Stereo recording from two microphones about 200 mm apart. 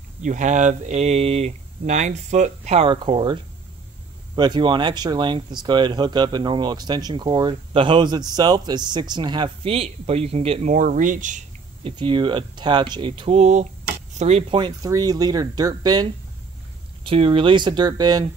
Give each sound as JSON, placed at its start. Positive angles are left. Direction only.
{"t": 0.2, "sound": "speech", "side_deg": -40}
{"t": 4.4, "sound": "speech", "side_deg": -20}
{"t": 11.8, "sound": "speech", "side_deg": -25}